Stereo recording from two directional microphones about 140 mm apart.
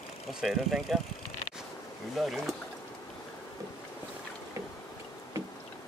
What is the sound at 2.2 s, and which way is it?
Speech, centre (ahead or behind).